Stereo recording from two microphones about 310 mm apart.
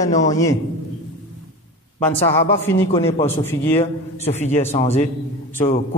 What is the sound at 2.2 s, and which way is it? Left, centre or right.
A man's voice, centre.